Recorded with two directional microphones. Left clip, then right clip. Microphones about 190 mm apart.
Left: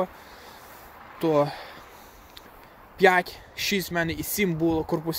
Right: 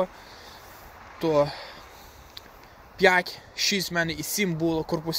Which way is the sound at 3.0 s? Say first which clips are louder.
Left 1 dB; 15° left (ahead or behind).